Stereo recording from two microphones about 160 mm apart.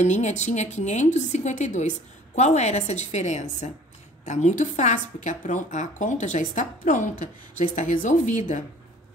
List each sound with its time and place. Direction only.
0.0 s speech: 45° left (ahead or behind)